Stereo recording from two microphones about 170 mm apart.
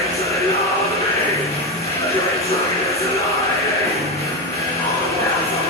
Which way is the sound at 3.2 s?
20° left (ahead or behind).